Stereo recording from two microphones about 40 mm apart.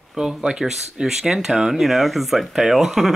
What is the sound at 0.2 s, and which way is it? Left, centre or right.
Speech, centre.